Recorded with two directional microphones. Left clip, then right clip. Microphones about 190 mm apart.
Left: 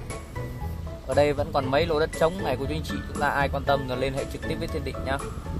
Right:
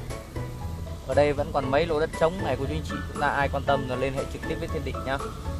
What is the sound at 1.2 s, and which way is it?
Speech, 35° left (ahead or behind).